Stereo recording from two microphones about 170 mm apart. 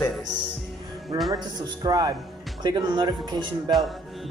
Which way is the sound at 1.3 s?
25° right (ahead or behind).